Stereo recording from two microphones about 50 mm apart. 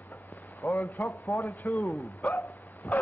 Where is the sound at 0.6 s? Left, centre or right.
Left.